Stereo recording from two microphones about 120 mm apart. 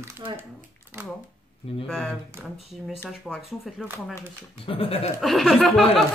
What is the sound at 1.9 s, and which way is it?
Speech, centre (ahead or behind).